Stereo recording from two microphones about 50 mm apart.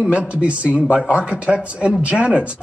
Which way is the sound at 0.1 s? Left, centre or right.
Right.